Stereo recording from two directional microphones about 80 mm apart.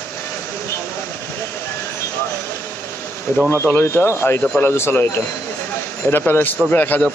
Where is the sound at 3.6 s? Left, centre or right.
Left.